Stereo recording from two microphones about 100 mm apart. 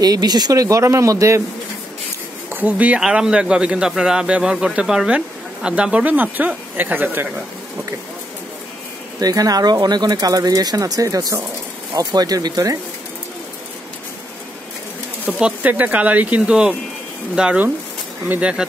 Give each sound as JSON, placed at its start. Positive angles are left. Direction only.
{"t": 0.0, "sound": "speech", "side_deg": -40}
{"t": 2.5, "sound": "speech", "side_deg": -15}
{"t": 9.2, "sound": "speech", "side_deg": -40}
{"t": 15.3, "sound": "speech", "side_deg": -15}